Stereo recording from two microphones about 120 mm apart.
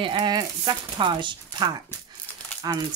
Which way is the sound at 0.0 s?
40° right (ahead or behind).